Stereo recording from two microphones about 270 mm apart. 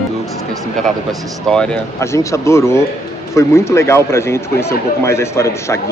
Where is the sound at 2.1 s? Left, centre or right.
Centre.